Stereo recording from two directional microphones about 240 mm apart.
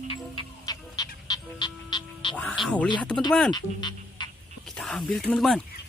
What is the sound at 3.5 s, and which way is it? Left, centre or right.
Insect, centre.